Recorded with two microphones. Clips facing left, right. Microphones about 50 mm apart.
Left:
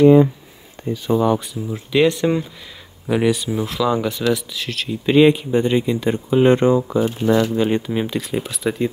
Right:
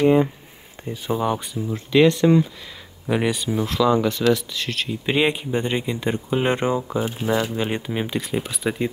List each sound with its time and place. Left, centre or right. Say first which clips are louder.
0.0 s speech: left 6 dB; centre
0.8 s a sound: left 7 dB; right
1.1 s speech: left 5 dB; centre
1.7 s speech: even; centre
3.1 s speech: left 4 dB; centre